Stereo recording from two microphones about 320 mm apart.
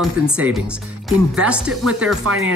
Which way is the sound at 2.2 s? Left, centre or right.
Right.